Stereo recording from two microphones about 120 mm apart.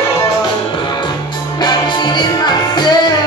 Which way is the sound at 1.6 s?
40° left (ahead or behind).